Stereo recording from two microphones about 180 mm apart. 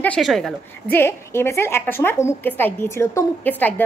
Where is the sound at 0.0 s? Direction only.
5° left (ahead or behind).